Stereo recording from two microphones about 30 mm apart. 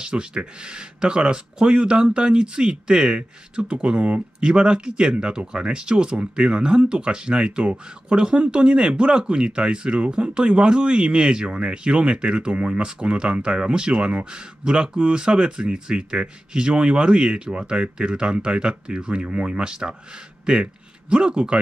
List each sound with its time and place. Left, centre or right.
0.0 s speech: right
21.1 s speech: right